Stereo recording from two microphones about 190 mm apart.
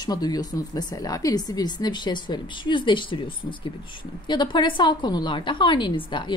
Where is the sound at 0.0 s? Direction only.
20° left (ahead or behind).